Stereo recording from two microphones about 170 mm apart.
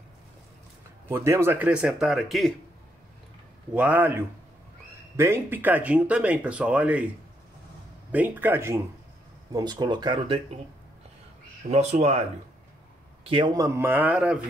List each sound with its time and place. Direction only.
1.0 s speech: 15° right (ahead or behind); by 2.5 s centre (ahead or behind)
3.7 s speech: 10° right (ahead or behind)
8.1 s speech: 10° right (ahead or behind); by 10.6 s 30° right (ahead or behind)
11.7 s speech: 40° right (ahead or behind); by 14.4 s 5° right (ahead or behind)